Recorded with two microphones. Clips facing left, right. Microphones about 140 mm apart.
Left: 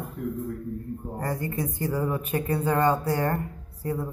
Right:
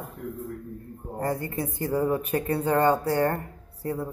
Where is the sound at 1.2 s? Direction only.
30° right (ahead or behind).